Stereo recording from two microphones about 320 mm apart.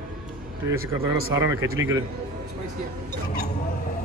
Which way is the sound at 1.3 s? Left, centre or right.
Centre.